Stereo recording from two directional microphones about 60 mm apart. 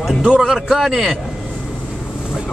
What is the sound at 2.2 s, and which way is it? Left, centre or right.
Boat, centre.